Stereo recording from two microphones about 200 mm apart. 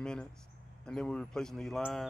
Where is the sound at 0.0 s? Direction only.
5° left (ahead or behind).